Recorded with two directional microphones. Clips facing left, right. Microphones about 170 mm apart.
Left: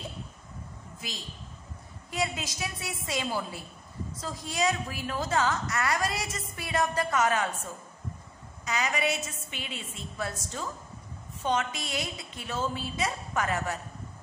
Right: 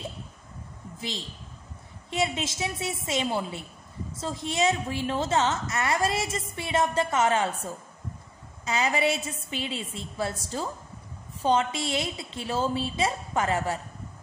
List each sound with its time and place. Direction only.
2.0 s a woman's voice: 25° right (ahead or behind)
8.6 s a woman's voice: 30° right (ahead or behind)